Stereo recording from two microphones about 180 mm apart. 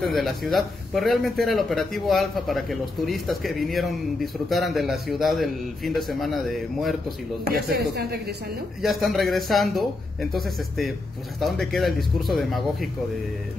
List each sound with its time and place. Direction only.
0.0 s speech: centre (ahead or behind)
7.4 s speech: 55° right (ahead or behind)
8.8 s speech: centre (ahead or behind)